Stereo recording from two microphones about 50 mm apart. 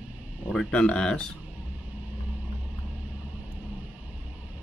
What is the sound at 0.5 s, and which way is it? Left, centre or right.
Speech, left.